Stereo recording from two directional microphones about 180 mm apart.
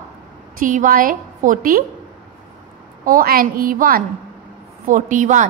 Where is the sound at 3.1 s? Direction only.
55° right (ahead or behind).